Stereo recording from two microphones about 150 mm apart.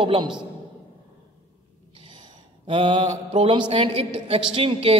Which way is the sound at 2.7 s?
35° right (ahead or behind).